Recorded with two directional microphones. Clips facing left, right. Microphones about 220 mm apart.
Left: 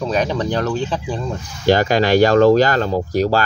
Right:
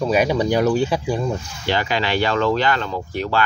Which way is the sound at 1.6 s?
45° left (ahead or behind).